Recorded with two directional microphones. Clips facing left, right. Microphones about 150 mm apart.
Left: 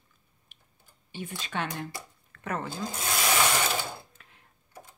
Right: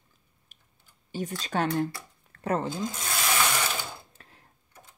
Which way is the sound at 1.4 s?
40° right (ahead or behind).